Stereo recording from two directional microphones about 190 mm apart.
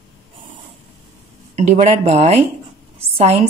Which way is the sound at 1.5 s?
35° right (ahead or behind).